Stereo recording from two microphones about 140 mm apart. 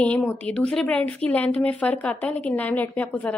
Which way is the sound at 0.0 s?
10° left (ahead or behind).